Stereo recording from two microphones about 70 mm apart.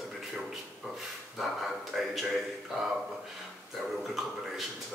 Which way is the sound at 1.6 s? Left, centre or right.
Centre.